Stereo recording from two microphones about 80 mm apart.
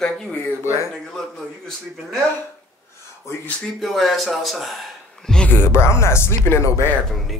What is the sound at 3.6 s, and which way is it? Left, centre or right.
A man's voice, centre.